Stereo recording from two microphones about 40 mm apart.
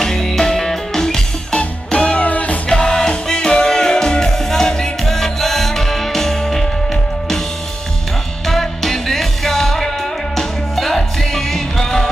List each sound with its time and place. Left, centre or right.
0.0 s music: centre
1.6 s music: left
2.2 s music: left
2.7 s music: centre
8.5 s music: centre